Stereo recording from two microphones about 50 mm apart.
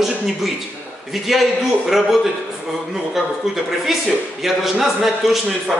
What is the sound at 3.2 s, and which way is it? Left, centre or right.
A man's voice, centre.